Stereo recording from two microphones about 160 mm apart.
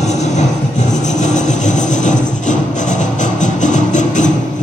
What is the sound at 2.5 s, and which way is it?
Music, 50° left (ahead or behind).